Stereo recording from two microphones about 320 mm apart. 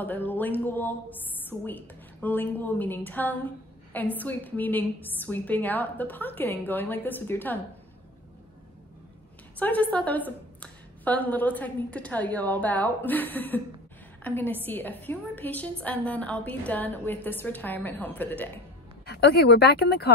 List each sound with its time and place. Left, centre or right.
0.0 s a woman's voice: centre
9.6 s a woman's voice: centre
19.0 s speech: left